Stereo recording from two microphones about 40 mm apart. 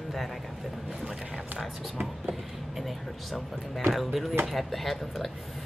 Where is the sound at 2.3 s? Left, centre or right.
Centre.